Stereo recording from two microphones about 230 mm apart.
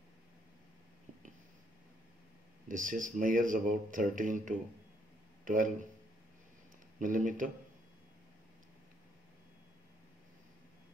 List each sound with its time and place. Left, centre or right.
2.7 s a man's voice: right
7.0 s speech: right